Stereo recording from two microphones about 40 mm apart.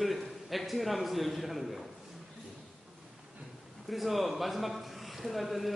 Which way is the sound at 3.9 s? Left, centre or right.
Centre.